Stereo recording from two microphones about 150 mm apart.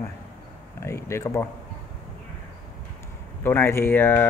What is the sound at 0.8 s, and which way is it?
Speech, 20° left (ahead or behind).